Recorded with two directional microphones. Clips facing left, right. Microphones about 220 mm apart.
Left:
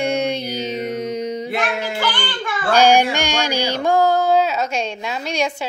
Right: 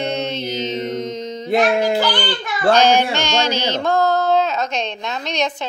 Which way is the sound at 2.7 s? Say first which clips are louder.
Even; 10° left (ahead or behind).